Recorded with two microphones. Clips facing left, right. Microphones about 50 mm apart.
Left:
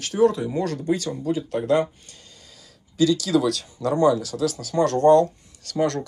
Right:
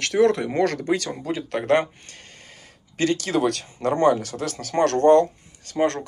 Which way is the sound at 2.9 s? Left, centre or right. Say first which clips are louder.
Left 2 dB; right.